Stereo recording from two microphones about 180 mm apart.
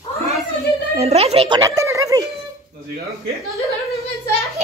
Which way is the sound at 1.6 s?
20° right (ahead or behind).